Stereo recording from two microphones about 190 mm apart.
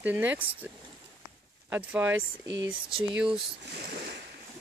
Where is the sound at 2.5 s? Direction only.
75° right (ahead or behind).